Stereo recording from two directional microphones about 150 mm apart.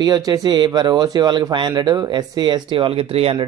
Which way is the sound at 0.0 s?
25° right (ahead or behind).